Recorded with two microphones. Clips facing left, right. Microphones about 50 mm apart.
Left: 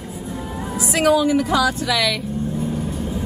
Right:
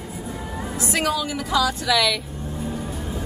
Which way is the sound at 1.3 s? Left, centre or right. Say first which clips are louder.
Left 5 dB; left.